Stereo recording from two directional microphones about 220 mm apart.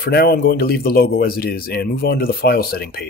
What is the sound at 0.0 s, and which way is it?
Speech, 45° left (ahead or behind).